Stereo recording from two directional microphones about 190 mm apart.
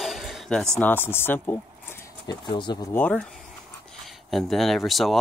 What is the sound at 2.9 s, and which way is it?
Speech, 10° left (ahead or behind).